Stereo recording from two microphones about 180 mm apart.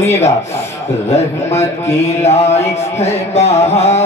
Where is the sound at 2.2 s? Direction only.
35° left (ahead or behind).